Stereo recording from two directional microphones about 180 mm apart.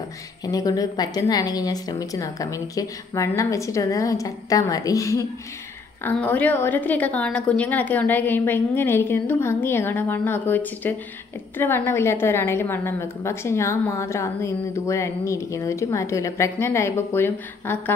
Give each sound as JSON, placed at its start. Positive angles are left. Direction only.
{"t": 0.5, "sound": "a woman's voice", "side_deg": 20}